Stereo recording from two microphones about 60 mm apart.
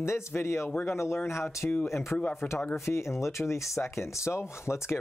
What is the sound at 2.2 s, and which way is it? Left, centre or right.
Speech, left.